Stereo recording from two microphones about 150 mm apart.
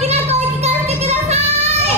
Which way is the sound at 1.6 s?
45° right (ahead or behind).